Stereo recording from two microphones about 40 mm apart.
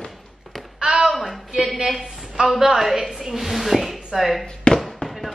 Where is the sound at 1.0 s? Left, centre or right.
Centre.